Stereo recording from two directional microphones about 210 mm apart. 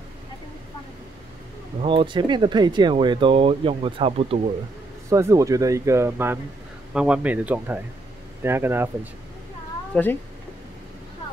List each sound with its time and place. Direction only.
1.8 s speech: 25° right (ahead or behind)
5.1 s speech: 15° right (ahead or behind)
9.9 s speech: 5° left (ahead or behind)